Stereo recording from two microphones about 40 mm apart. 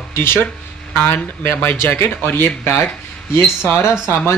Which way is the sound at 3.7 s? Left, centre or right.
Left.